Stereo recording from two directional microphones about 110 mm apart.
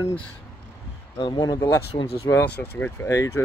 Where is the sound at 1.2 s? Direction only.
40° left (ahead or behind).